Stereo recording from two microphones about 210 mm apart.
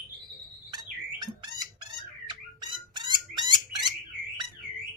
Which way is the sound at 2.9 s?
20° right (ahead or behind).